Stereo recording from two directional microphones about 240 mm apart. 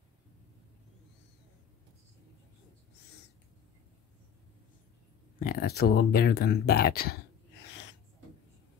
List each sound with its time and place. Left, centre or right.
5.4 s speech: left